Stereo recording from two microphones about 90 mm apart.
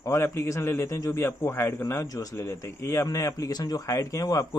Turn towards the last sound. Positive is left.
turn(degrees=40)  # may be behind; listen again after turning